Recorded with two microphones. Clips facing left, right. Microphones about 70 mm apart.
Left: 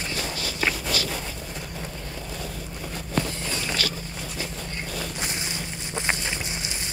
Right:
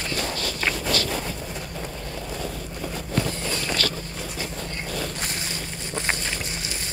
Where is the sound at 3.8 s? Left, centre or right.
Centre.